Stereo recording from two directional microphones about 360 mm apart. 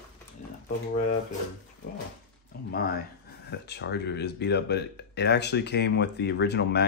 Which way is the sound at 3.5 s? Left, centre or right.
Left.